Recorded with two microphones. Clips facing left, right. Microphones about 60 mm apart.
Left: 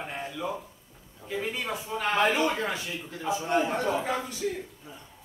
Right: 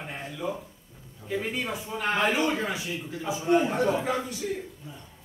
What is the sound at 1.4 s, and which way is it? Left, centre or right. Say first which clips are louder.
A man's voice: right 1 dB; centre.